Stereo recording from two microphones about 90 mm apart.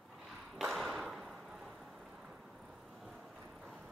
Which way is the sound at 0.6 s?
5° right (ahead or behind).